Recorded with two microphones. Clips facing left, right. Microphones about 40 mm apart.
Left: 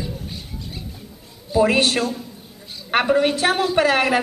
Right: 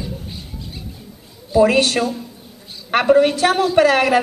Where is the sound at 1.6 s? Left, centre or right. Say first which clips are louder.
Right 2 dB; left.